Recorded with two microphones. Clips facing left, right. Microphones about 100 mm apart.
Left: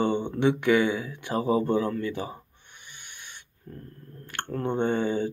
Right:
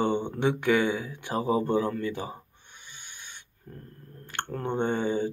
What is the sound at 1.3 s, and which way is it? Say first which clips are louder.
Speech: left 1 dB; 30° right (ahead or behind).